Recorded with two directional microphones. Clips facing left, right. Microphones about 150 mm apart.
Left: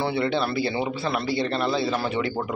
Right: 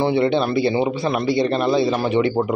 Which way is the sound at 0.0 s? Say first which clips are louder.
Right 6 dB; 20° right (ahead or behind).